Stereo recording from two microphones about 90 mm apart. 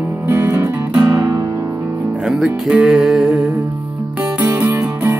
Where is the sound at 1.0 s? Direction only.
45° right (ahead or behind).